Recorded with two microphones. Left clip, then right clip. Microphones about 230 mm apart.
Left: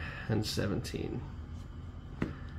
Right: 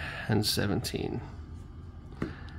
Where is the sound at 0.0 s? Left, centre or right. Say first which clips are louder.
Right 6 dB; right.